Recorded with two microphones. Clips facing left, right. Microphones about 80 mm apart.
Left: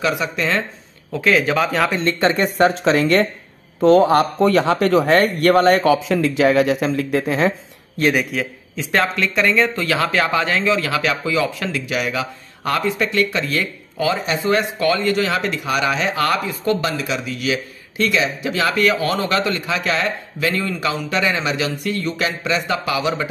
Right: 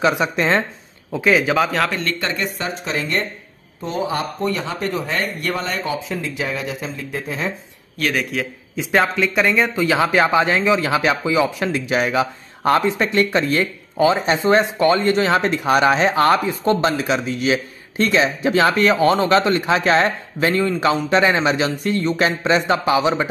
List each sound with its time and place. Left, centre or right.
0.0 s speech: right
1.1 s speech: centre
2.0 s speech: left
2.7 s speech: left
5.1 s speech: left
8.3 s a man's voice: centre
8.7 s speech: centre; by 23.2 s right